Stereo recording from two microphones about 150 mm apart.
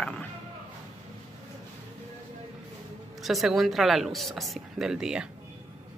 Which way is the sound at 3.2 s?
Centre (ahead or behind).